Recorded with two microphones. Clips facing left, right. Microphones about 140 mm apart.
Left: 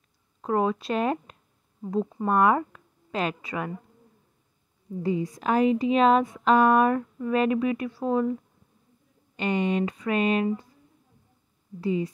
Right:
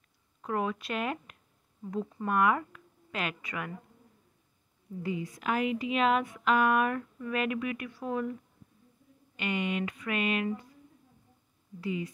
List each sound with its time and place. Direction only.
0.4 s a woman's voice: 30° left (ahead or behind)
5.0 s a woman's voice: 35° left (ahead or behind)
9.4 s a woman's voice: 35° left (ahead or behind)
11.8 s a woman's voice: 35° left (ahead or behind)